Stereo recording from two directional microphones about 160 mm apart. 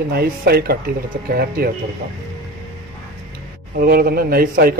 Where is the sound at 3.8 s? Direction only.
70° right (ahead or behind).